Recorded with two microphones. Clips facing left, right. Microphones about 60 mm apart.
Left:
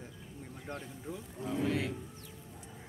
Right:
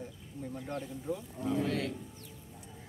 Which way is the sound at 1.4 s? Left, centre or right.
Centre.